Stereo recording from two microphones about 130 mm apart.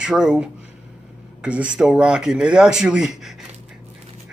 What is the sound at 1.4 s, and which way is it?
Speech, 10° right (ahead or behind).